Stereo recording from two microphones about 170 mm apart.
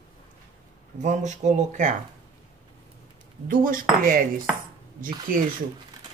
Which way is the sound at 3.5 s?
55° right (ahead or behind).